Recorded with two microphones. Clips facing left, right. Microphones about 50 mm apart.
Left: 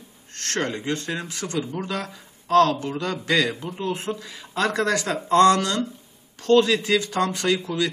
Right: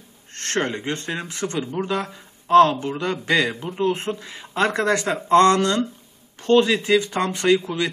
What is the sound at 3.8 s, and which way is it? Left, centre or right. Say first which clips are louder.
Speech: right 7 dB; right.